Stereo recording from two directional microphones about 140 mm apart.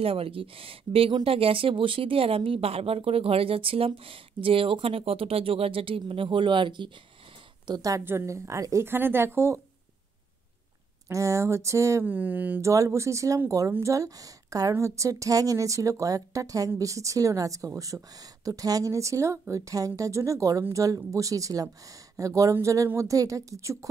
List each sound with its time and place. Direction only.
0.0 s speech: 40° right (ahead or behind); by 9.6 s 20° right (ahead or behind)
11.1 s speech: 20° right (ahead or behind)